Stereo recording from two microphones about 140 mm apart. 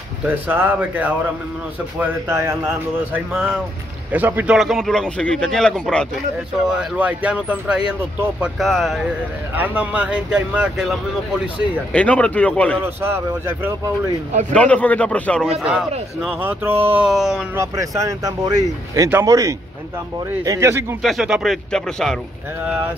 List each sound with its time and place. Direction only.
0.2 s speech: 15° right (ahead or behind)
4.6 s speech: centre (ahead or behind)
6.8 s speech: 10° right (ahead or behind)
9.6 s speech: 10° right (ahead or behind)
11.9 s speech: 10° left (ahead or behind)
12.8 s speech: 15° right (ahead or behind)
14.5 s speech: 10° left (ahead or behind)
15.6 s speech: 5° right (ahead or behind)
17.6 s speech: 20° right (ahead or behind)
21.0 s speech: centre (ahead or behind)